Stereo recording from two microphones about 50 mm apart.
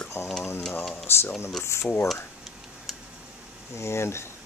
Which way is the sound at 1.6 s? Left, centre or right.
Left.